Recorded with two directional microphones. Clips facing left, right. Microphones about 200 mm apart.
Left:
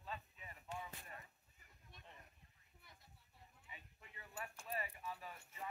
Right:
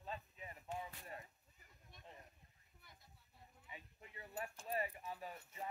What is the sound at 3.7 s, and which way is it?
Speech, 35° right (ahead or behind).